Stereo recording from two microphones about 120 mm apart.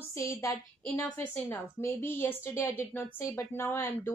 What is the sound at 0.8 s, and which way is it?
A woman's voice, 10° left (ahead or behind).